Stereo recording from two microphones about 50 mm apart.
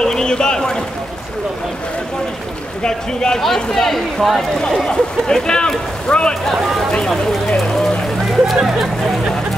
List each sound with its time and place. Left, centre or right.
0.0 s a sound: centre
2.8 s speech: centre
4.6 s speech: centre
8.5 s vehicle: centre